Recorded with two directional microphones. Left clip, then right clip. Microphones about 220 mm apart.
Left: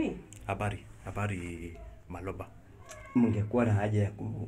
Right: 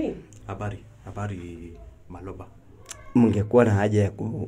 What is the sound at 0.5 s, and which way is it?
Speech, 15° left (ahead or behind).